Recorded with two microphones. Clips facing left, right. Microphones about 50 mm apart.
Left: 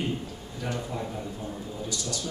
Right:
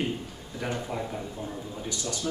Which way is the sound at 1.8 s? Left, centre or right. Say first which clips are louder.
Right 3 dB; right.